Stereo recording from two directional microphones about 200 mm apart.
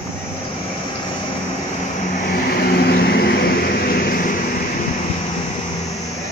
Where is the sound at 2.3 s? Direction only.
50° left (ahead or behind).